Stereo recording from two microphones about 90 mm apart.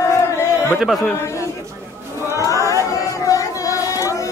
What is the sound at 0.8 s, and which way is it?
Speech, centre (ahead or behind).